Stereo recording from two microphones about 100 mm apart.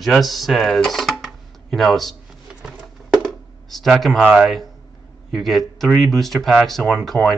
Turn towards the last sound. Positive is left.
turn(degrees=20)  # may be behind; listen again after turning